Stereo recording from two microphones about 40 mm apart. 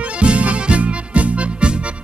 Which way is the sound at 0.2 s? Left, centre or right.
Right.